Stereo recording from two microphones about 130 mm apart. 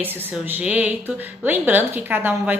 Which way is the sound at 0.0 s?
15° right (ahead or behind).